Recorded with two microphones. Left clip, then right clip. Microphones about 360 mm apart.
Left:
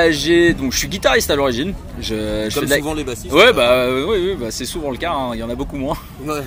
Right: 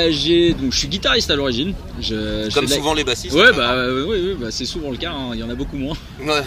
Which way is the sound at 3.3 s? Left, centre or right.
Centre.